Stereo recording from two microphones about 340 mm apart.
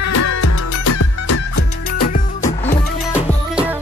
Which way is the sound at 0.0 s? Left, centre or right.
Left.